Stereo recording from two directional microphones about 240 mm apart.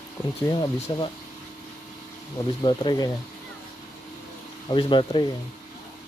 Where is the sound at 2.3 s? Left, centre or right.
Centre.